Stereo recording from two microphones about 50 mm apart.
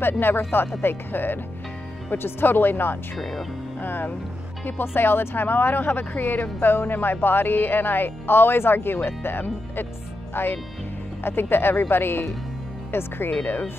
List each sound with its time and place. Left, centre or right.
0.0 s speech: left
3.2 s speech: centre
3.8 s speech: left